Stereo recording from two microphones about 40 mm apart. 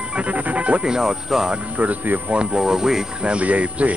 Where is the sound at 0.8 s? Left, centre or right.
Centre.